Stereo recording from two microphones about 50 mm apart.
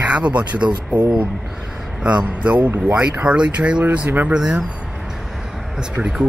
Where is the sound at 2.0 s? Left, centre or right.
Right.